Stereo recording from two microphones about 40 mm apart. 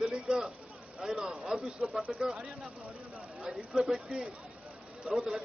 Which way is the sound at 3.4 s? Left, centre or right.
Centre.